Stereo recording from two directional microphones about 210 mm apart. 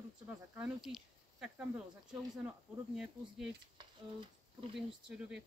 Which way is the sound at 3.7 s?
25° right (ahead or behind).